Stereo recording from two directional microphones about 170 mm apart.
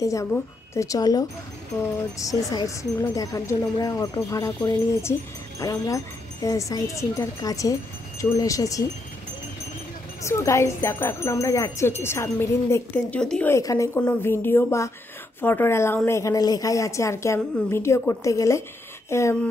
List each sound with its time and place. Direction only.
0.0 s a woman's voice: 20° left (ahead or behind)
10.2 s wind chime: 15° left (ahead or behind)
13.6 s a woman's voice: 20° left (ahead or behind)
14.0 s wind chime: 15° left (ahead or behind)
16.1 s a woman's voice: 20° left (ahead or behind)
17.6 s wind chime: 15° left (ahead or behind)
19.0 s speech: 15° left (ahead or behind)